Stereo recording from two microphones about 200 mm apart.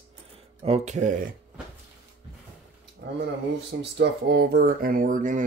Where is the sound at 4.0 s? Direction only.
55° right (ahead or behind); by 5.4 s 40° right (ahead or behind).